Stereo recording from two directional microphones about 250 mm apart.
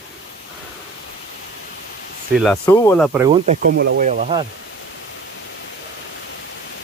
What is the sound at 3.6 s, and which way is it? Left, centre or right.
Speech, right.